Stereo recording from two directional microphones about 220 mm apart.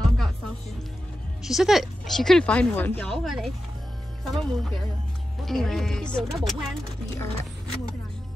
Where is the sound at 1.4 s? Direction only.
Centre (ahead or behind).